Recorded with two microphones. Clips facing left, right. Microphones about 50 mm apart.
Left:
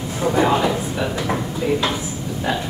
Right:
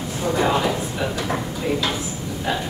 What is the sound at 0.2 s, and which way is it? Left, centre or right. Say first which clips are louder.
Speech: left 3 dB; centre.